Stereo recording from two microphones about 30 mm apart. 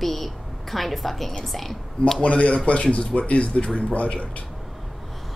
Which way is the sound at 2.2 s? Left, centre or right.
Left.